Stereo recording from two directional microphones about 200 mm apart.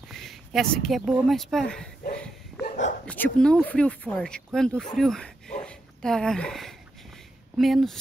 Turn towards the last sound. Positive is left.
turn(degrees=0)  # may be behind; listen again after turning